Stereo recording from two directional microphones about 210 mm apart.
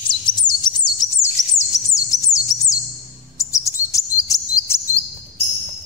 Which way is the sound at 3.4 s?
15° left (ahead or behind).